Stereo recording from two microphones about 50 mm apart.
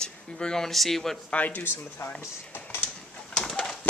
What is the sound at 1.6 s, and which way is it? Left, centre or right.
Speech, left.